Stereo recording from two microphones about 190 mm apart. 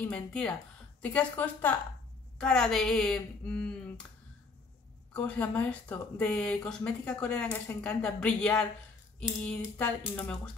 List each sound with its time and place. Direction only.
0.0 s speech: 5° left (ahead or behind)
5.1 s speech: 5° left (ahead or behind)